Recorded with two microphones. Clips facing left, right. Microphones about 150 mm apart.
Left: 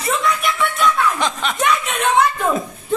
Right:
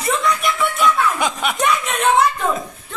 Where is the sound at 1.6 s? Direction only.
Centre (ahead or behind).